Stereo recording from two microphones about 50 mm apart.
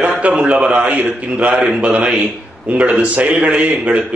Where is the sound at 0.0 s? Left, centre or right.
Right.